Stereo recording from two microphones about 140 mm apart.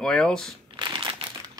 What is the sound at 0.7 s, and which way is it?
Crumpling, 35° right (ahead or behind).